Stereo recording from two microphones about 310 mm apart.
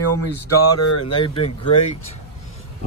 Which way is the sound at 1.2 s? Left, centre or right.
Centre.